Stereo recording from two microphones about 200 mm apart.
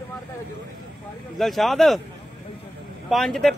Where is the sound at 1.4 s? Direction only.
Centre (ahead or behind).